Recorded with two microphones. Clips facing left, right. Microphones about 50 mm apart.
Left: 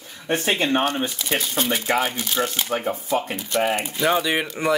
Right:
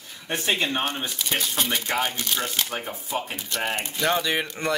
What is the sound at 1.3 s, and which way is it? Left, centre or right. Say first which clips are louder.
Speech: left 2 dB; centre.